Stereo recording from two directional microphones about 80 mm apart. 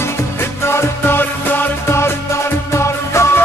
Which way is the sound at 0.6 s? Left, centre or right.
Left.